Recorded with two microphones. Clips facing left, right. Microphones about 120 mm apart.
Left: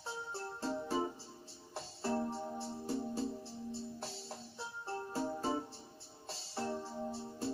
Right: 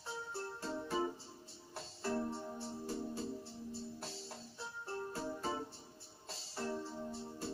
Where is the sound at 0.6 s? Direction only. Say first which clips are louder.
Left 3 dB; 25° left (ahead or behind).